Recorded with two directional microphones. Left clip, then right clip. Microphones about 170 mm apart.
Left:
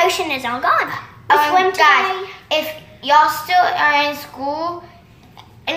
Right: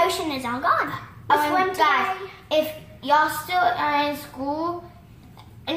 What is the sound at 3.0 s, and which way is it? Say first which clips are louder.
A woman's voice: left 7 dB; 5° right (ahead or behind).